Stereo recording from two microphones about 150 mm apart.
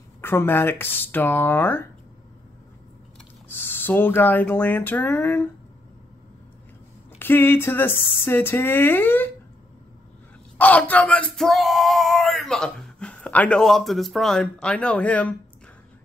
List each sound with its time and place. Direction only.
0.2 s speech: 15° left (ahead or behind)
3.4 s speech: 15° left (ahead or behind)
7.2 s speech: 15° left (ahead or behind)
10.6 s speech: 10° left (ahead or behind)